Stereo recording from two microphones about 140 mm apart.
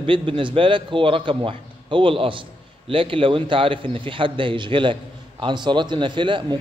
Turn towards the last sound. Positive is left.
turn(degrees=-35)  # may be behind; listen again after turning